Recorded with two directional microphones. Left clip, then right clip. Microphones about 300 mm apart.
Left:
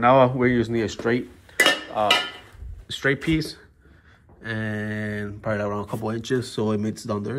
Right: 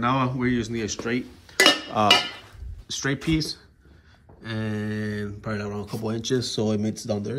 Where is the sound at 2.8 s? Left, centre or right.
Centre.